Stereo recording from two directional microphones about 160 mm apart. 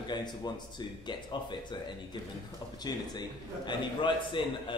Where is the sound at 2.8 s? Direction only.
25° left (ahead or behind).